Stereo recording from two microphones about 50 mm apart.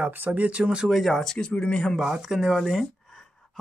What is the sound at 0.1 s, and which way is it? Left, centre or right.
Speech, right.